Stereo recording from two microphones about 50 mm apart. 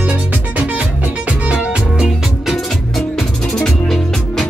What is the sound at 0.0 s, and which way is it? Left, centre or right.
Music, right.